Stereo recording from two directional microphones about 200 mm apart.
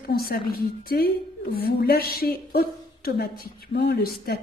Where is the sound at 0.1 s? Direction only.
45° left (ahead or behind).